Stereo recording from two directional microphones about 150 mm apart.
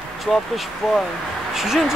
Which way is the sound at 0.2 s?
Centre (ahead or behind).